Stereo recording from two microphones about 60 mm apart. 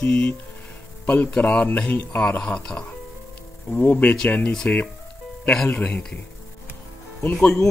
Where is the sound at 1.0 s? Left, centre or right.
Left.